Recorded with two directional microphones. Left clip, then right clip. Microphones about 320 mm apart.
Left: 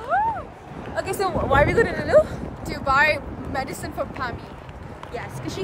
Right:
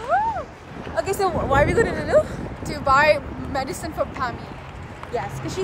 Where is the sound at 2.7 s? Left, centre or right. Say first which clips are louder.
Right 2 dB; centre.